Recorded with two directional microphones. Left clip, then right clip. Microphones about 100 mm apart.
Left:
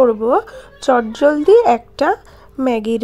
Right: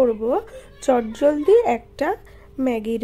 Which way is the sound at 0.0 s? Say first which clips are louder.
Left 6 dB; 20° left (ahead or behind).